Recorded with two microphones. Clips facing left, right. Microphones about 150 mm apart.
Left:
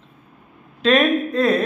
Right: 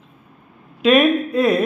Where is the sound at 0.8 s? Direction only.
10° right (ahead or behind).